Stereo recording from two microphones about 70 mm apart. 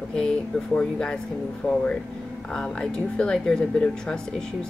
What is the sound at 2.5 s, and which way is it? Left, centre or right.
Speech, centre.